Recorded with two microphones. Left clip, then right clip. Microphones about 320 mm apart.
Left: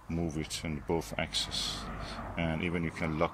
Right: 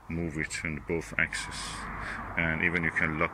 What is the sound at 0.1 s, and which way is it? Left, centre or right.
Speech, centre.